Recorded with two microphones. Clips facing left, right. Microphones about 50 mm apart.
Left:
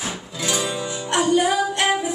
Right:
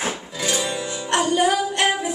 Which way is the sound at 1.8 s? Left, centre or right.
Left.